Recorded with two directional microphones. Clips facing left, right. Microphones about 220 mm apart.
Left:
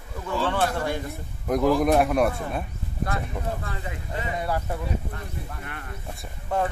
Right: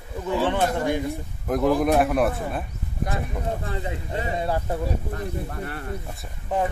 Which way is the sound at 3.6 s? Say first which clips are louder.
Right 4 dB; 25° right (ahead or behind).